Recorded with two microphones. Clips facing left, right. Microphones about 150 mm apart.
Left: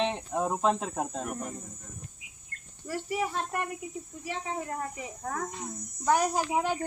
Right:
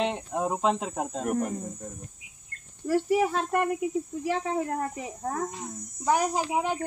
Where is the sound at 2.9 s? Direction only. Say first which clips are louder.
Right 8 dB; 50° right (ahead or behind).